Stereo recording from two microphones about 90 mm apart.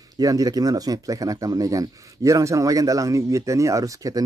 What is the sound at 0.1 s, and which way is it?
Speech, 40° right (ahead or behind).